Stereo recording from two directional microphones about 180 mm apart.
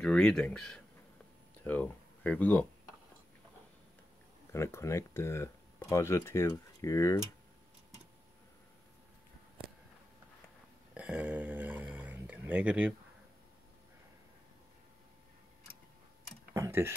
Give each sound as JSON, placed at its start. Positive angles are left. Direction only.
{"t": 0.0, "sound": "speech", "side_deg": 5}
{"t": 4.5, "sound": "speech", "side_deg": 15}
{"t": 11.0, "sound": "a sound", "side_deg": -5}
{"t": 16.5, "sound": "tick-tock", "side_deg": -15}